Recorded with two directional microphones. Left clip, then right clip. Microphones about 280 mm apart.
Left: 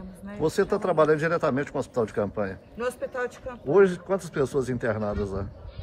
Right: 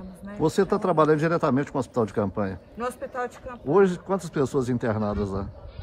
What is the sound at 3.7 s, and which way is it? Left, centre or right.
Speech, centre.